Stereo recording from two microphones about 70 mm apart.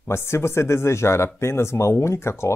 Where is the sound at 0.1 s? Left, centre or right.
Left.